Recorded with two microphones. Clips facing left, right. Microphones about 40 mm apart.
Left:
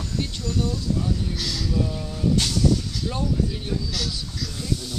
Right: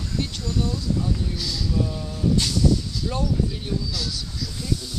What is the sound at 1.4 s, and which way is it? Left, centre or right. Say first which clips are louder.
Speech: left 1 dB; left.